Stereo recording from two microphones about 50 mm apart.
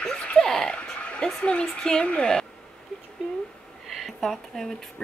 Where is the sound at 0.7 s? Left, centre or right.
Left.